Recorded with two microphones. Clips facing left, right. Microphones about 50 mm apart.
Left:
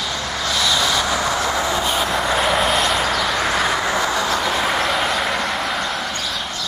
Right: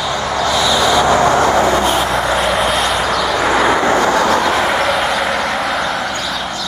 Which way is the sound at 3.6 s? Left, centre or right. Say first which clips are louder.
Right 7 dB; right.